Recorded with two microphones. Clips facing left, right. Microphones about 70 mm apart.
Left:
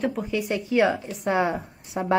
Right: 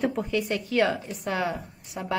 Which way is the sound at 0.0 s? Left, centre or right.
Centre.